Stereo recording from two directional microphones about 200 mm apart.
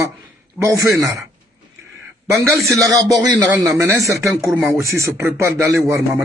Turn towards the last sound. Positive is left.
turn(degrees=-15)  # may be behind; listen again after turning